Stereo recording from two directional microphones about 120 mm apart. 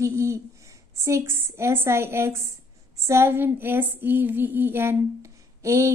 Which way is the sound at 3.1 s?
20° right (ahead or behind).